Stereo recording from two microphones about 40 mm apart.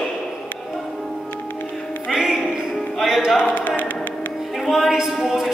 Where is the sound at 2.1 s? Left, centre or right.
Centre.